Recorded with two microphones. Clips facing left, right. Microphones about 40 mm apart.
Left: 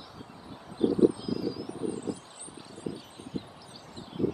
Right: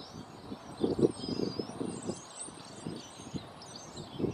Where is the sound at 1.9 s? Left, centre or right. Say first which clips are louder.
Left 5 dB; centre.